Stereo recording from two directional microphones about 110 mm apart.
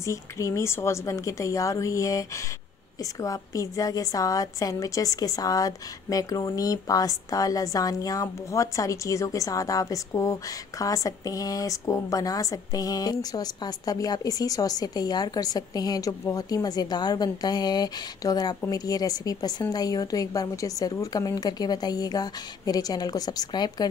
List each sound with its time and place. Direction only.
0.0 s a woman's voice: 25° left (ahead or behind)